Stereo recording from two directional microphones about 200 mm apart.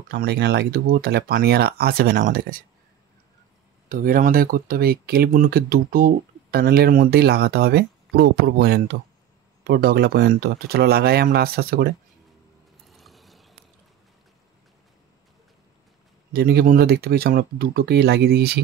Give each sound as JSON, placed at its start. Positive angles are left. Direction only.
{"t": 0.1, "sound": "speech", "side_deg": -50}
{"t": 3.9, "sound": "speech", "side_deg": -45}
{"t": 12.8, "sound": "ratchet", "side_deg": 0}
{"t": 16.3, "sound": "speech", "side_deg": -50}